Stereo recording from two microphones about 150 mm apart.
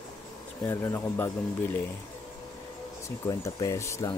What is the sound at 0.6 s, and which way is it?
Speech, 20° left (ahead or behind).